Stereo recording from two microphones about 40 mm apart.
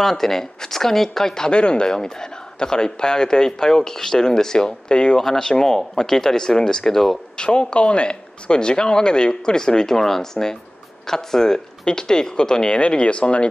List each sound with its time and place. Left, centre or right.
0.0 s speech: centre
1.5 s speech: left
5.2 s speech: centre
7.3 s speech: left